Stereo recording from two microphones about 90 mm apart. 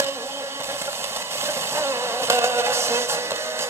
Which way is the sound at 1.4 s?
30° right (ahead or behind).